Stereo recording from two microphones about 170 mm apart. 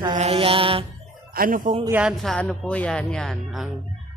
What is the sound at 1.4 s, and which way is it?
Speech, 55° right (ahead or behind).